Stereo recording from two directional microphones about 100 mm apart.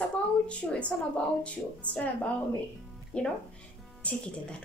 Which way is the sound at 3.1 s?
10° left (ahead or behind).